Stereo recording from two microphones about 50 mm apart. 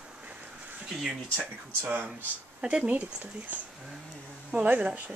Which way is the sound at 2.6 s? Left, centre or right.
Centre.